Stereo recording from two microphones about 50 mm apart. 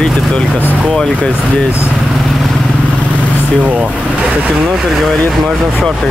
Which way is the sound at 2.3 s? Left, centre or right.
Centre.